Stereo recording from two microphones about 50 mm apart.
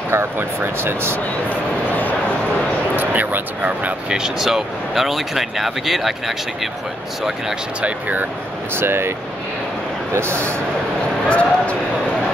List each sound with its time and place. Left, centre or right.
0.1 s speech: right
3.0 s speech: right
4.1 s speech: centre
7.8 s speech: right
8.7 s speech: right
10.1 s speech: right
11.2 s speech: left